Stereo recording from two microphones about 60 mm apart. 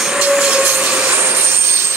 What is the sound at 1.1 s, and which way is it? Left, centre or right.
Vehicle, right.